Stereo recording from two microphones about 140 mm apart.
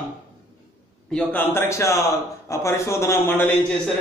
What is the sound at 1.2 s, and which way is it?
A man's voice, 15° left (ahead or behind).